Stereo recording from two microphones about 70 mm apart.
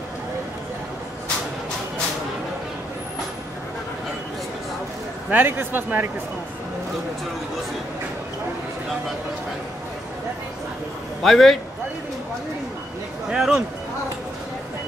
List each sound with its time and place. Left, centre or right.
5.3 s a man's voice: right
11.2 s a man's voice: centre
13.3 s speech: centre